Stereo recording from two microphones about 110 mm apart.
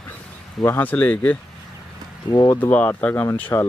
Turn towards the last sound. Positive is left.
turn(degrees=15)  # may be behind; listen again after turning